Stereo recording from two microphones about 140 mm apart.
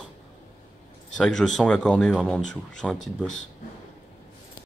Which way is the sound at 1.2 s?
5° left (ahead or behind).